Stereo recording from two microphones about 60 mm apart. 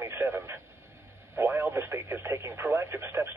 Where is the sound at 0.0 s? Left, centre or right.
Right.